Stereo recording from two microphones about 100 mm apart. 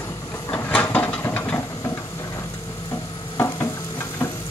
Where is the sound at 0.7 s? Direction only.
20° left (ahead or behind).